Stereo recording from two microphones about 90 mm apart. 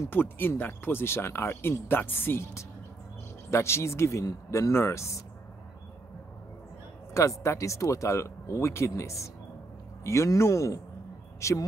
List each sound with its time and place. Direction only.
0.1 s speech: 25° left (ahead or behind)
7.2 s speech: 35° left (ahead or behind)